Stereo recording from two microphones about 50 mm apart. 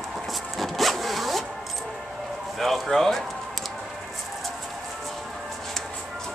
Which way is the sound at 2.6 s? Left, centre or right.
Centre.